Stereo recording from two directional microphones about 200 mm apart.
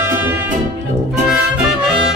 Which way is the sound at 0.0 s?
10° right (ahead or behind).